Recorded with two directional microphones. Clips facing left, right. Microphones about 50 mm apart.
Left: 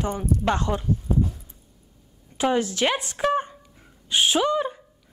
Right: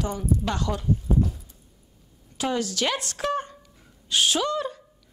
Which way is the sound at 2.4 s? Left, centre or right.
Left.